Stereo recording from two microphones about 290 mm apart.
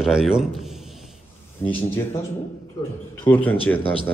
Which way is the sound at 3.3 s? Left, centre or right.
Centre.